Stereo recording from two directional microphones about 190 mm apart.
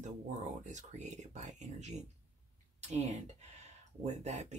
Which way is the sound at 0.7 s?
40° right (ahead or behind).